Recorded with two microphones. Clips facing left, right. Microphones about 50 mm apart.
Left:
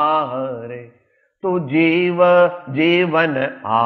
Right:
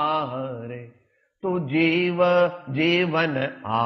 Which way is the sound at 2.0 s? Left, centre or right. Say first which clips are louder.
Left 8 dB; left.